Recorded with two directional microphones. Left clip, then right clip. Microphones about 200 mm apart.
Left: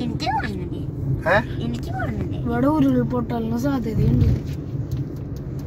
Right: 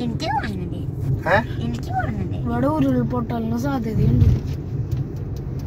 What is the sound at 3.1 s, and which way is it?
Speech, 45° right (ahead or behind).